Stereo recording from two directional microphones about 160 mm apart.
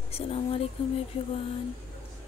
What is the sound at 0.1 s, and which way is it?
Speech, 40° left (ahead or behind).